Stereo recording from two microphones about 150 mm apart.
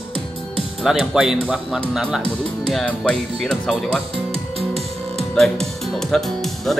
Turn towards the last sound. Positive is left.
turn(degrees=0)  # may be behind; listen again after turning